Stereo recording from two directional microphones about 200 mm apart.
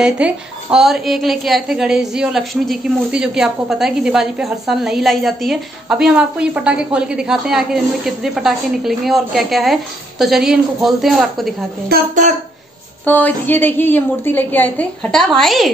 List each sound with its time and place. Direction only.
0.0 s a woman's voice: 5° right (ahead or behind)
12.2 s speech: 35° right (ahead or behind)
13.0 s a woman's voice: 10° left (ahead or behind)